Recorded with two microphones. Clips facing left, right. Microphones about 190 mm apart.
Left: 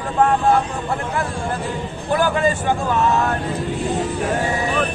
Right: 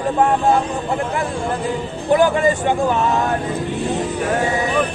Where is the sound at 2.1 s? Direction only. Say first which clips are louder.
Right 4 dB; 20° right (ahead or behind).